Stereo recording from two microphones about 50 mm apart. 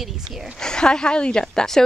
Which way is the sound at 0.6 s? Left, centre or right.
Centre.